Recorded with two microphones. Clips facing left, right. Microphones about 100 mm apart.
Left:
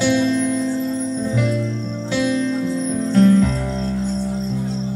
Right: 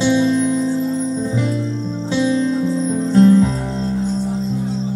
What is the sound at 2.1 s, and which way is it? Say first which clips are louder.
Music: right 2 dB; 25° right (ahead or behind).